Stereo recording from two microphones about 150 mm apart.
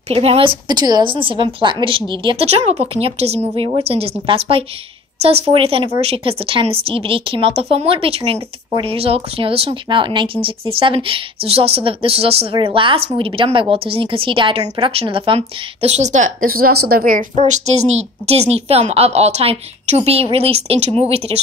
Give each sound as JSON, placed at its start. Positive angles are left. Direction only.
{"t": 0.1, "sound": "a woman's voice", "side_deg": -40}
{"t": 0.7, "sound": "a woman's voice", "side_deg": -25}
{"t": 17.5, "sound": "a woman's voice", "side_deg": -45}